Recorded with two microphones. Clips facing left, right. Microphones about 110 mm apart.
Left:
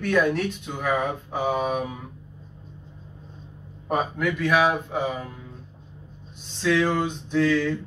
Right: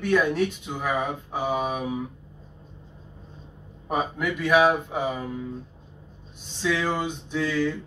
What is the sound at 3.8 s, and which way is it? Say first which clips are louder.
Speech: left 2 dB; 10° right (ahead or behind).